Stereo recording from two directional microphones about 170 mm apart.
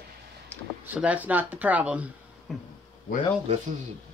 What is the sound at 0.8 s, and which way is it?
A woman's voice, 10° right (ahead or behind).